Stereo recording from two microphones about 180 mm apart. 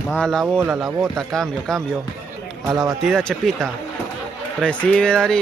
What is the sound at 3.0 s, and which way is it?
Speech, 5° left (ahead or behind).